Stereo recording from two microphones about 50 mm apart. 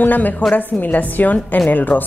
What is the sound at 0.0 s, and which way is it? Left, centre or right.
A woman's voice, left.